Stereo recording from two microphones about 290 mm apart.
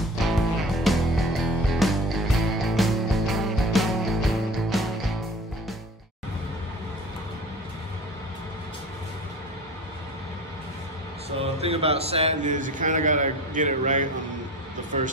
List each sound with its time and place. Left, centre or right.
0.2 s music: centre
11.2 s a man's voice: right